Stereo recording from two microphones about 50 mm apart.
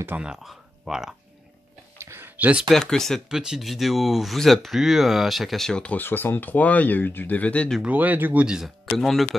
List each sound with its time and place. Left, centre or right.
0.4 s speech: centre
2.0 s a sound: right
2.3 s speech: right
2.7 s speech: centre
3.3 s speech: centre
5.9 s speech: left
7.9 s speech: right
8.6 s speech: centre